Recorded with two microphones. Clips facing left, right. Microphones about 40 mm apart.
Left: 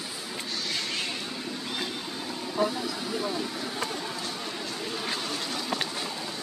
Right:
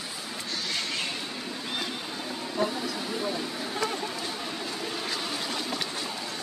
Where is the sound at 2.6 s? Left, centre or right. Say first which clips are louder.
Left 1 dB; centre.